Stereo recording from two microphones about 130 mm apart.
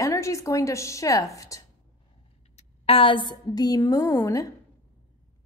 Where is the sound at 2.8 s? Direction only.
45° left (ahead or behind); by 4.4 s 25° left (ahead or behind).